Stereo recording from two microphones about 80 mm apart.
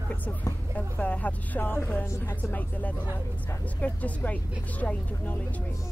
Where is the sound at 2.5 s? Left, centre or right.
Centre.